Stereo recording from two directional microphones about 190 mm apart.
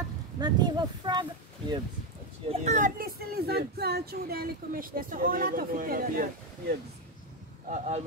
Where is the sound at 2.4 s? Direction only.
40° right (ahead or behind).